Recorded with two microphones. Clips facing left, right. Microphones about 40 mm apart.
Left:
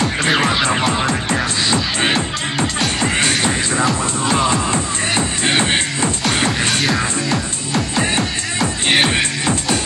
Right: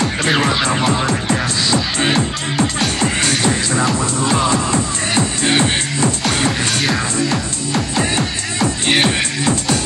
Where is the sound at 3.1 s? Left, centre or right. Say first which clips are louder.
Left 1 dB; left.